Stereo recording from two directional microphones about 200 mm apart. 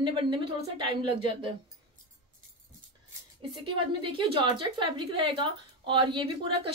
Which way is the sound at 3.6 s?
25° right (ahead or behind).